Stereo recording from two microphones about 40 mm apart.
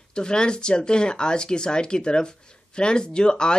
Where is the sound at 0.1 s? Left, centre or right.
Left.